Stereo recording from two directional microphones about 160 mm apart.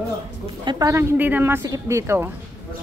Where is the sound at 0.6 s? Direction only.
20° right (ahead or behind).